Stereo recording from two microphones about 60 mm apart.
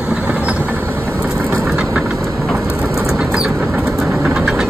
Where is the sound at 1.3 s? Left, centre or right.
Right.